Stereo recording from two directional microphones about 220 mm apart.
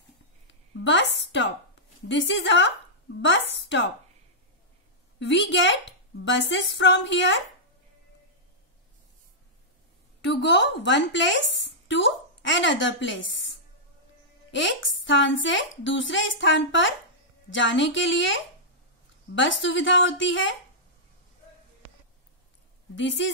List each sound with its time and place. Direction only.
0.5 s a sound: 55° left (ahead or behind)
2.0 s a woman's voice: 55° left (ahead or behind)
5.2 s speech: 55° left (ahead or behind)
10.2 s a woman's voice: 55° left (ahead or behind)
14.5 s a woman's voice: 55° left (ahead or behind)
22.9 s a woman's voice: 55° left (ahead or behind)